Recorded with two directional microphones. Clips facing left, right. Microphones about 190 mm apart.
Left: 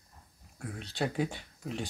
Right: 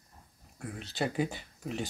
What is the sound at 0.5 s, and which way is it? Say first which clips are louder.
Speech: even; centre (ahead or behind).